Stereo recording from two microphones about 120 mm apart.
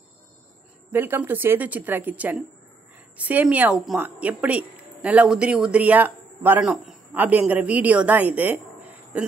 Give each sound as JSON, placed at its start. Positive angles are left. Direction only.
{"t": 0.8, "sound": "speech", "side_deg": -15}
{"t": 6.6, "sound": "a man's voice", "side_deg": -5}